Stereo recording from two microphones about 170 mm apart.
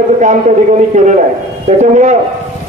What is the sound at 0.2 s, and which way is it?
A man's voice, 45° right (ahead or behind).